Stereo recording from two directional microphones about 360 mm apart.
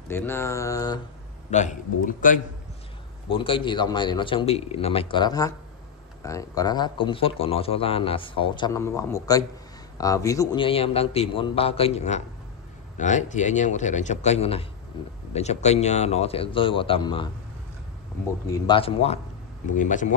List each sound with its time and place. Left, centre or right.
0.1 s a man's voice: centre
1.5 s a man's voice: centre
18.7 s a man's voice: centre